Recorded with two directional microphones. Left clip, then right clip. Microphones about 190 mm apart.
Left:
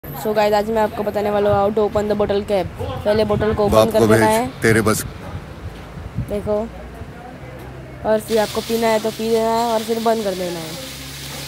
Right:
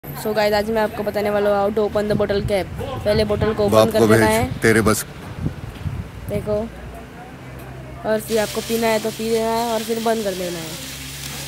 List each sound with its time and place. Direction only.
0.2 s speech: centre (ahead or behind)
6.5 s speech: centre (ahead or behind)
8.0 s speech: centre (ahead or behind)